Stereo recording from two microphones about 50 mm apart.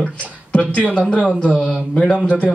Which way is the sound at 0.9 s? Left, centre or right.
Left.